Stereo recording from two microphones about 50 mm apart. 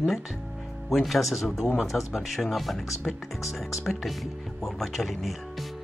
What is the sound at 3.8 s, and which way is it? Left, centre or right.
Speech, centre.